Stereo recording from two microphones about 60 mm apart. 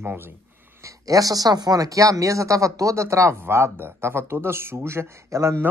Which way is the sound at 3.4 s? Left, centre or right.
Right.